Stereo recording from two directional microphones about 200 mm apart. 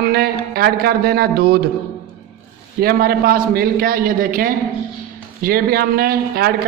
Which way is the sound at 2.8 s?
50° right (ahead or behind).